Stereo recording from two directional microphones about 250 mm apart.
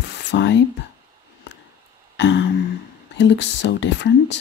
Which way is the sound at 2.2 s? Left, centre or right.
Left.